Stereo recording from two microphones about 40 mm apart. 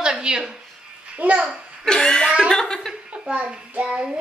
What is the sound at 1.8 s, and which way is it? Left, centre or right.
A woman's voice, centre.